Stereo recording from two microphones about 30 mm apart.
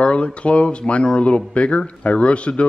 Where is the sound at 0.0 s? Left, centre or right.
Left.